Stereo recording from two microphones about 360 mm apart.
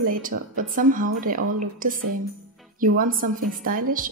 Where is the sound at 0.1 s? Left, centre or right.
Right.